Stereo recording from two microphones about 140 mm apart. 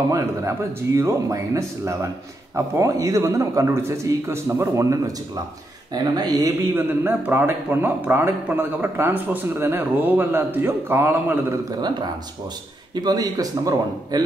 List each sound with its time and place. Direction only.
0.1 s a man's voice: 20° right (ahead or behind)
11.7 s a man's voice: 30° right (ahead or behind)